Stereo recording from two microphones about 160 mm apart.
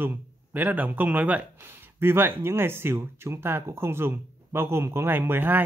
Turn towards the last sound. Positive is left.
turn(degrees=-10)  # may be behind; listen again after turning